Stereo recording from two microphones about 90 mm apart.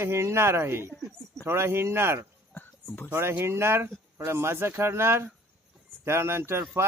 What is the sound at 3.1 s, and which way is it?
Speech, 30° right (ahead or behind).